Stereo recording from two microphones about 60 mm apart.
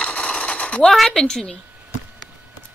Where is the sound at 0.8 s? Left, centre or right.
Centre.